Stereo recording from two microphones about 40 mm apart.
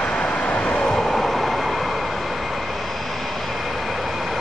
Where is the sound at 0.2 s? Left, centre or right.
Left.